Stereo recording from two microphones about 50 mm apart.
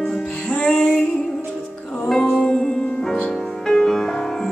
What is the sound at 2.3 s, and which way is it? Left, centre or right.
Music, centre.